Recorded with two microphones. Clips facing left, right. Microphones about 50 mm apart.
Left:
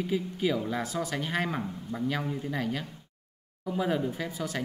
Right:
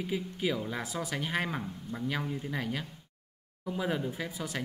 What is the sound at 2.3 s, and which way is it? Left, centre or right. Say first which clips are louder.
A man's voice: left 3 dB; centre.